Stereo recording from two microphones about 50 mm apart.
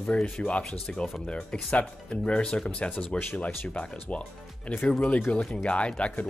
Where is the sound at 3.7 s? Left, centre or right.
Left.